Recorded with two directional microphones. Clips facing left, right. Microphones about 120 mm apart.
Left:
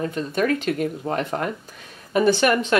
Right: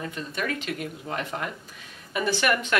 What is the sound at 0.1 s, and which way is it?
Speech, 40° left (ahead or behind).